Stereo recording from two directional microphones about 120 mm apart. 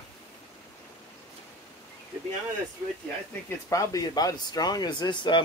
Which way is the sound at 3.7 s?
30° left (ahead or behind).